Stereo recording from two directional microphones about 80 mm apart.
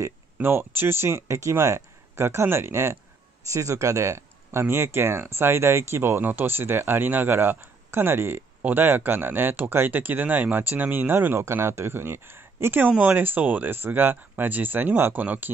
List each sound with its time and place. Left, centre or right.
0.4 s speech: right